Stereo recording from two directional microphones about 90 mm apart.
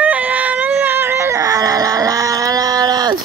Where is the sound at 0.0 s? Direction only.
15° right (ahead or behind).